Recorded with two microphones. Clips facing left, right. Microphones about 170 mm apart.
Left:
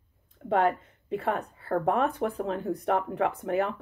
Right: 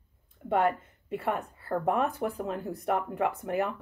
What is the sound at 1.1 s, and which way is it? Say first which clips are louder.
Speech: left 2 dB; 5° right (ahead or behind).